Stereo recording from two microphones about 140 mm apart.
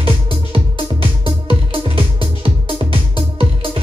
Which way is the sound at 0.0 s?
40° right (ahead or behind).